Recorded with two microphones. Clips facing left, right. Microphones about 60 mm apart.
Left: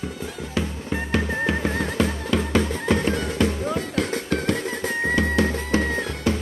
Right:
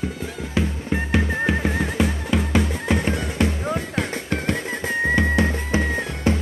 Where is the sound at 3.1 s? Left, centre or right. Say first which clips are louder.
Even; right.